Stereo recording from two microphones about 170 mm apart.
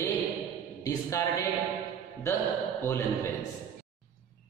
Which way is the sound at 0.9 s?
15° left (ahead or behind).